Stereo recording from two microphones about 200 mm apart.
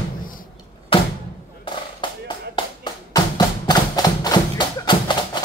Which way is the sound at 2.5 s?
20° left (ahead or behind).